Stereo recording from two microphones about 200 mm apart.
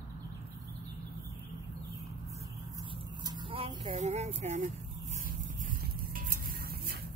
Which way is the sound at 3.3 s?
25° right (ahead or behind).